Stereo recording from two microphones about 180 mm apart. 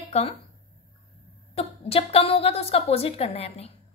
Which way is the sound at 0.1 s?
35° left (ahead or behind).